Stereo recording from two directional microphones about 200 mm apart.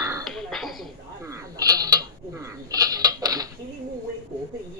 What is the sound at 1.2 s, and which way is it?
Speech, 15° right (ahead or behind).